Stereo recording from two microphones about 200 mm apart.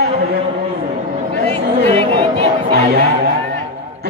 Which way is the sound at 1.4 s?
30° right (ahead or behind).